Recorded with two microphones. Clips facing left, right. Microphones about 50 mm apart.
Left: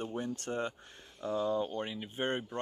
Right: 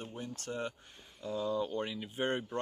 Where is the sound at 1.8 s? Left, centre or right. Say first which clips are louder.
Even; centre.